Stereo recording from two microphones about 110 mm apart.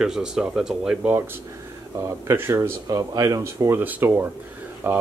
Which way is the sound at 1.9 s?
25° right (ahead or behind).